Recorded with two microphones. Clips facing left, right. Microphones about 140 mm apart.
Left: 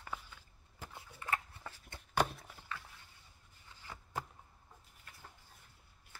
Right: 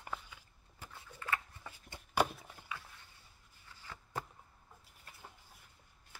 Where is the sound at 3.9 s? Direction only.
15° left (ahead or behind).